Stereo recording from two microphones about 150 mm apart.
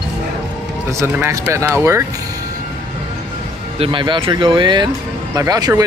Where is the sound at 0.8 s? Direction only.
20° right (ahead or behind).